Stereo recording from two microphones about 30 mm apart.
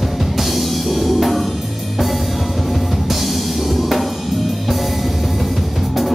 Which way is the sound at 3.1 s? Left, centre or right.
Centre.